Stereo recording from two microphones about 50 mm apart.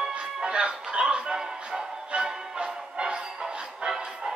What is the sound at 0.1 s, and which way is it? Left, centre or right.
Music, centre.